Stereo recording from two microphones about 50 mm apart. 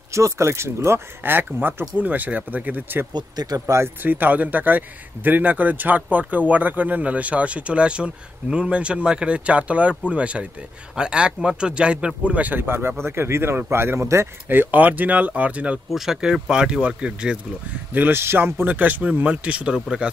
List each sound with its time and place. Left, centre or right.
0.1 s speech: right
3.7 s speech: right
4.0 s speech: right
12.5 s speech: right
14.0 s speech: right
14.5 s speech: right
15.9 s speech: centre
18.1 s speech: right
19.2 s speech: right
19.7 s speech: centre